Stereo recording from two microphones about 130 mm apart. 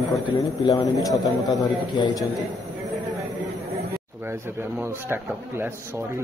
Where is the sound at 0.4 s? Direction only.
25° left (ahead or behind).